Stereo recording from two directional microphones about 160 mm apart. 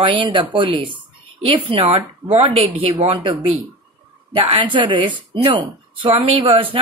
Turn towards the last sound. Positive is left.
turn(degrees=-35)  # may be behind; listen again after turning